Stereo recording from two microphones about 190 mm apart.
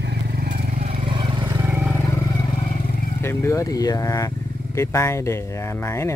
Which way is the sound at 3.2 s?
15° left (ahead or behind).